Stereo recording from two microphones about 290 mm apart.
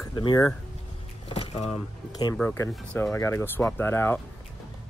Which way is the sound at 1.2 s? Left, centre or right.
Centre.